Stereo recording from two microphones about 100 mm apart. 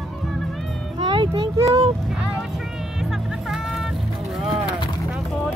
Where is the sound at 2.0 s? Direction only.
10° right (ahead or behind).